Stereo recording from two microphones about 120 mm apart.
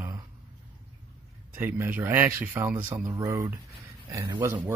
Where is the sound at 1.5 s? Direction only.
15° right (ahead or behind).